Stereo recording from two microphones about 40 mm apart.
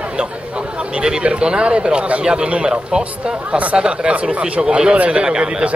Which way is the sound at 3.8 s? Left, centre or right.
Right.